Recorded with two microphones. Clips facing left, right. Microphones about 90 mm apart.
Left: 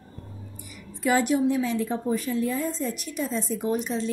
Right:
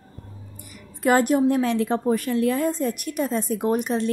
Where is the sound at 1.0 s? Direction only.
50° right (ahead or behind).